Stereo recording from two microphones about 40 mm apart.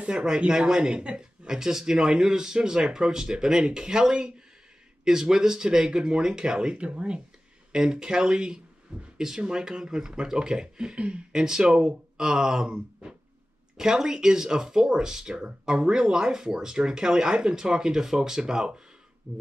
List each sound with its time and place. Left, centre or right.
0.0 s speech: right
6.8 s speech: right
7.7 s speech: centre
11.0 s speech: right
11.3 s speech: centre
19.3 s speech: right